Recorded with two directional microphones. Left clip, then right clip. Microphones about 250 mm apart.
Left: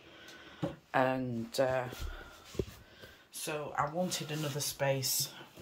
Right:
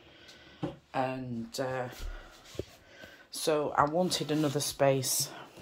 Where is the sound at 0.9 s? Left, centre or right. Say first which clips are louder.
Left 3 dB; centre.